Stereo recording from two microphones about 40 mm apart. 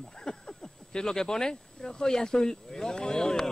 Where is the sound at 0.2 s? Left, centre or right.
Centre.